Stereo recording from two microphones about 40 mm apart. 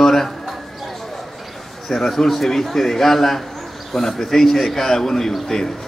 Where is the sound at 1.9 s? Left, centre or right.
Centre.